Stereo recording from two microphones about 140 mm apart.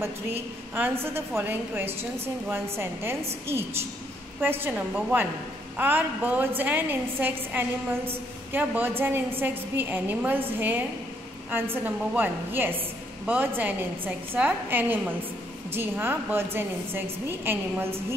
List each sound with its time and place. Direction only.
0.0 s a woman's voice: 15° right (ahead or behind)
1.9 s a woman's voice: 45° right (ahead or behind)
2.5 s a woman's voice: 15° right (ahead or behind)
4.4 s a woman's voice: 15° right (ahead or behind)
11.7 s a woman's voice: 15° right (ahead or behind)